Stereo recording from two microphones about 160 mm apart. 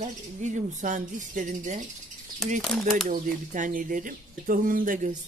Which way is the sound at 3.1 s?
55° right (ahead or behind).